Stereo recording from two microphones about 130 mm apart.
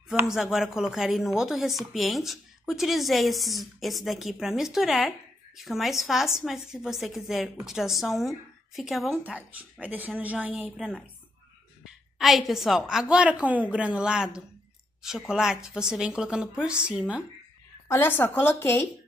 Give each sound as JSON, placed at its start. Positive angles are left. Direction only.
{"t": 0.1, "sound": "a woman's voice", "side_deg": -5}
{"t": 9.2, "sound": "a woman's voice", "side_deg": -10}
{"t": 12.2, "sound": "a woman's voice", "side_deg": 0}
{"t": 17.8, "sound": "speech", "side_deg": 20}